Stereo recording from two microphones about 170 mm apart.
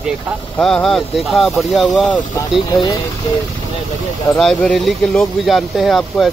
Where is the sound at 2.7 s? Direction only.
20° left (ahead or behind).